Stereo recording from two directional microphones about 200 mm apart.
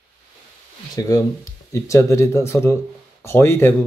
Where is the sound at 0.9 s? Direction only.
15° left (ahead or behind).